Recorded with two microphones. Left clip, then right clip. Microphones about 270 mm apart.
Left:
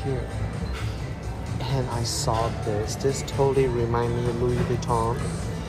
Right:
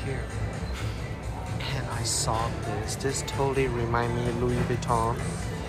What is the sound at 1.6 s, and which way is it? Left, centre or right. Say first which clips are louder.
Speech: left 4 dB; centre.